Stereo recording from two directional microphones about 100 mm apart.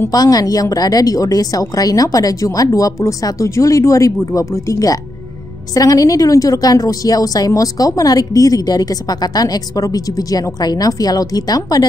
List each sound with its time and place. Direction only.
0.1 s a woman's voice: 40° left (ahead or behind)